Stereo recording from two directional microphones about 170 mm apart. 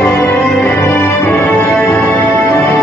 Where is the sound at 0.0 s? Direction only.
10° left (ahead or behind).